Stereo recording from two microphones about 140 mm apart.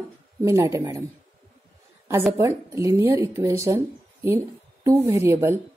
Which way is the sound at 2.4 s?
20° right (ahead or behind).